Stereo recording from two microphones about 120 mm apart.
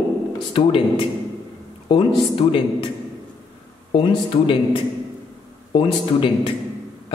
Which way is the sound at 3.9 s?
45° left (ahead or behind).